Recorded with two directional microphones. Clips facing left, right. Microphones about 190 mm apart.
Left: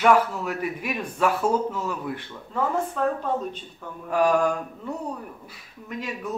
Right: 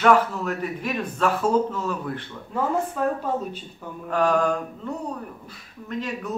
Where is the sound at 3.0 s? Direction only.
5° right (ahead or behind).